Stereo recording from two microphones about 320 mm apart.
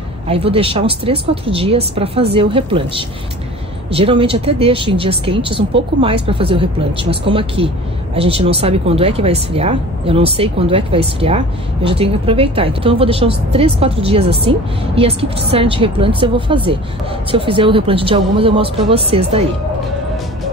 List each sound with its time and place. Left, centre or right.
0.3 s speech: centre